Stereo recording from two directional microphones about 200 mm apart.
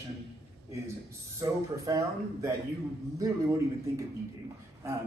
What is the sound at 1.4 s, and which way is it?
A man's voice, 15° right (ahead or behind).